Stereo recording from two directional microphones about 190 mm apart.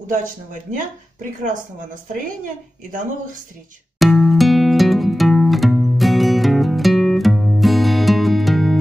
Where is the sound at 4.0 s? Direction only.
Centre (ahead or behind).